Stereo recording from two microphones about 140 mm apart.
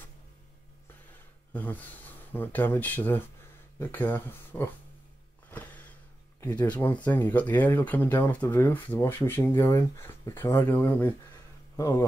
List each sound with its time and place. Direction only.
1.5 s speech: 10° left (ahead or behind)
6.4 s speech: 10° left (ahead or behind)